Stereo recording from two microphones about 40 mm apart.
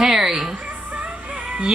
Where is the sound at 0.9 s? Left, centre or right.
Right.